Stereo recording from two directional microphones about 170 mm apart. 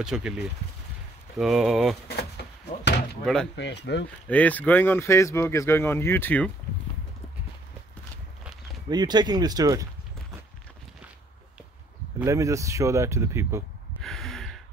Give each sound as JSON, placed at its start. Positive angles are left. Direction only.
{"t": 0.0, "sound": "speech", "side_deg": -5}
{"t": 2.0, "sound": "speech", "side_deg": 70}
{"t": 3.5, "sound": "speech", "side_deg": 90}
{"t": 4.3, "sound": "speech", "side_deg": 10}
{"t": 8.8, "sound": "speech", "side_deg": -25}
{"t": 12.3, "sound": "speech", "side_deg": -20}
{"t": 14.0, "sound": "gasp", "side_deg": 0}